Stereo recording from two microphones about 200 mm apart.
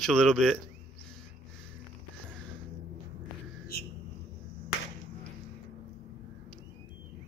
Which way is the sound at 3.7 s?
50° left (ahead or behind).